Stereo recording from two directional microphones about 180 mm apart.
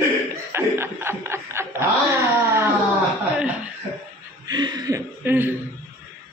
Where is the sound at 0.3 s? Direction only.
15° right (ahead or behind).